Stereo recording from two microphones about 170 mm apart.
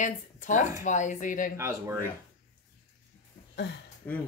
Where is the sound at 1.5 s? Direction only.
15° right (ahead or behind).